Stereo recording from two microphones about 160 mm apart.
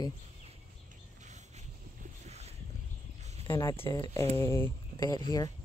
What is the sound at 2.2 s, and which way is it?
Boat, 40° right (ahead or behind).